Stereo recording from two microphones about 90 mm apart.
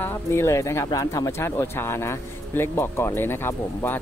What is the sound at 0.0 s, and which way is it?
Speech, 30° left (ahead or behind).